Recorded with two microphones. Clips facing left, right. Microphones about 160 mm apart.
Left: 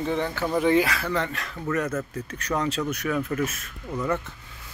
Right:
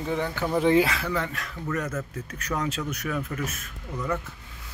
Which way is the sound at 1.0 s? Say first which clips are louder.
Left 2 dB; 5° right (ahead or behind).